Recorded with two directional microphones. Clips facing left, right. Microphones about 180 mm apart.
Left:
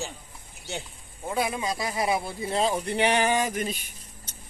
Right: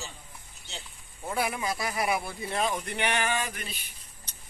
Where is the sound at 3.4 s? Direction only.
45° left (ahead or behind).